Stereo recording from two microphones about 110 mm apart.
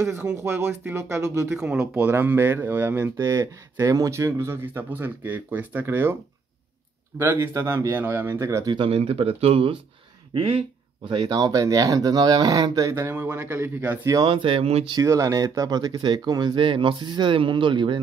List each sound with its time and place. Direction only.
0.4 s speech: 25° right (ahead or behind)
1.5 s speech: 5° right (ahead or behind)
7.2 s speech: 20° right (ahead or behind)
8.7 s speech: 55° right (ahead or behind)
11.1 s speech: 40° right (ahead or behind)
13.0 s speech: 20° right (ahead or behind)
14.2 s speech: 50° right (ahead or behind)
14.9 s speech: 30° right (ahead or behind)